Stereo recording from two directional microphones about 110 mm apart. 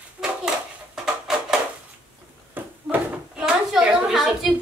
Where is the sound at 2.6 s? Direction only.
15° right (ahead or behind).